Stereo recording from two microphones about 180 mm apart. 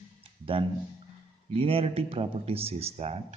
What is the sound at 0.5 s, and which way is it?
Speech, 30° right (ahead or behind).